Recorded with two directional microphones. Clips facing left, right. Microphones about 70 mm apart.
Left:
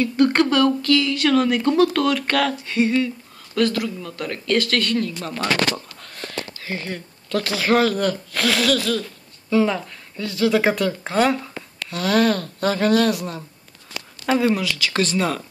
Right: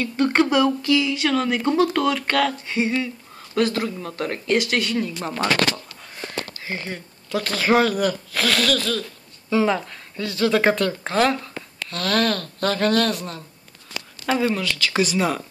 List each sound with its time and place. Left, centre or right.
0.0 s a sound: centre
0.5 s speech: centre
3.5 s speech: right
4.5 s speech: centre
6.1 s a sound: centre
7.4 s speech: centre
9.5 s speech: centre